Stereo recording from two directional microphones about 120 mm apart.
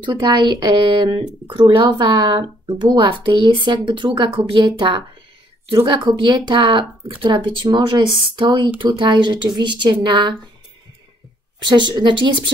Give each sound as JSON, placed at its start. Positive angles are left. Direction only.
{"t": 0.0, "sound": "speech", "side_deg": -40}
{"t": 2.6, "sound": "speech", "side_deg": -45}
{"t": 11.6, "sound": "speech", "side_deg": -40}